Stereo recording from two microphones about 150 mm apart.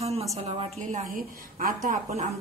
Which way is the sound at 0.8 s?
60° right (ahead or behind).